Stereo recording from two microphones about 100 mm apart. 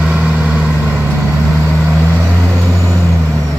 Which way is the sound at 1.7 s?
5° right (ahead or behind).